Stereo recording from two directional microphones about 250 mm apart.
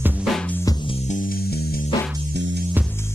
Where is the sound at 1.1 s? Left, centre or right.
Left.